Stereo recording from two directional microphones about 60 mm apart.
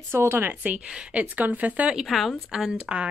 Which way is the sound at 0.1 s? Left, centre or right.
Right.